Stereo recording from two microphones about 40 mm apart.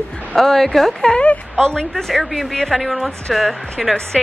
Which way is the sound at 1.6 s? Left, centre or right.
Centre.